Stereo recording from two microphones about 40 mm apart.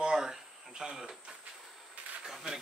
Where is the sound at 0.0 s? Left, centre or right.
Centre.